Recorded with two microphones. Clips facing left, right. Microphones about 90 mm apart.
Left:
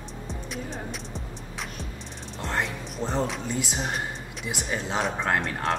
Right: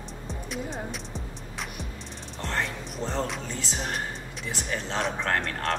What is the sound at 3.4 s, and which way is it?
Speech, 15° left (ahead or behind).